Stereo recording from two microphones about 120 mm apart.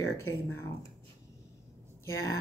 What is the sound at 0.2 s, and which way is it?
Speech, 20° left (ahead or behind).